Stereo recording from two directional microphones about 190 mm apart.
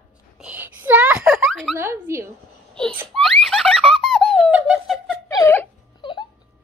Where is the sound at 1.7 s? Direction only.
15° right (ahead or behind).